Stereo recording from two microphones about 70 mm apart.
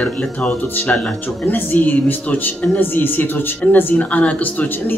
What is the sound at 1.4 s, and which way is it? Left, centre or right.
Speech, left.